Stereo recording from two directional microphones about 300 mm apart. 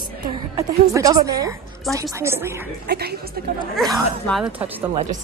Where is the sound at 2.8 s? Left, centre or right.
Right.